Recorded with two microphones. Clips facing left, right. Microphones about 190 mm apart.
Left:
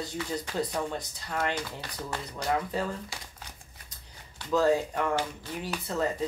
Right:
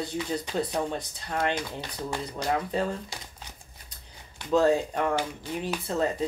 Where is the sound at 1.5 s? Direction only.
15° right (ahead or behind).